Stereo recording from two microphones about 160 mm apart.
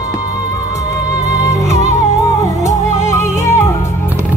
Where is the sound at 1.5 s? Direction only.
20° left (ahead or behind).